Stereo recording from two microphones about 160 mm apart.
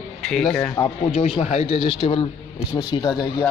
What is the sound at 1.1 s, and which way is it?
Speech, 40° left (ahead or behind).